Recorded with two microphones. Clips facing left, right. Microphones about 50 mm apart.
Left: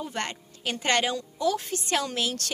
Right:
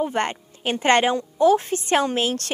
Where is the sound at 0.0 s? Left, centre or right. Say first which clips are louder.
Right 9 dB; right.